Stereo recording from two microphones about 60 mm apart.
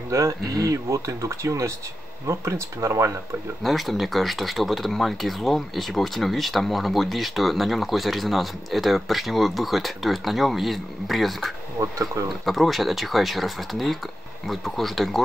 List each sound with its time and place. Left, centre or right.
0.1 s speech: right
3.6 s speech: centre
11.8 s speech: right
12.4 s speech: centre